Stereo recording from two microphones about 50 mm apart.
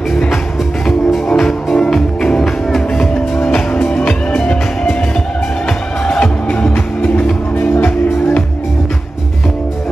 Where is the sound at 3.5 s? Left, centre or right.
Centre.